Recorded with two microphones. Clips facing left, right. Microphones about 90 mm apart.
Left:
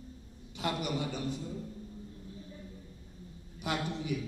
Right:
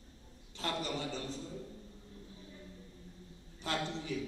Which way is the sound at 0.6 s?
15° left (ahead or behind).